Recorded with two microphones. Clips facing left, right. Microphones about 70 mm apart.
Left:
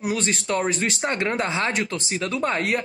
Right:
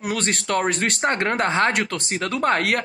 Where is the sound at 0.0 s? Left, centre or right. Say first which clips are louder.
Even; right.